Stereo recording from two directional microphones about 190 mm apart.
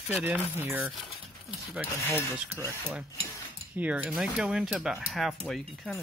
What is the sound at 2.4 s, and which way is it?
Speech, 10° right (ahead or behind).